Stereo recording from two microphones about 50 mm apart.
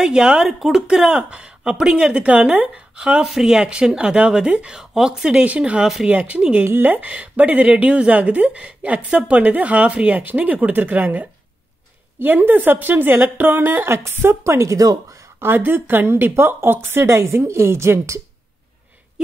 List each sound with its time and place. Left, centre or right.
0.0 s speech: centre
6.6 s speech: right
6.9 s a woman's voice: right
13.9 s a woman's voice: right
15.4 s speech: right
19.2 s a sound: centre